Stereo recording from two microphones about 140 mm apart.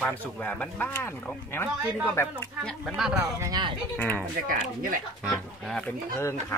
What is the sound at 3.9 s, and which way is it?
Speech, 10° left (ahead or behind).